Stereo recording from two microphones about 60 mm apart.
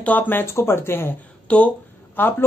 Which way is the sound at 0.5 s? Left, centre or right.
Left.